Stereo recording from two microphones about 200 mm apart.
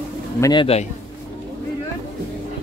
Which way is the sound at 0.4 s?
20° left (ahead or behind).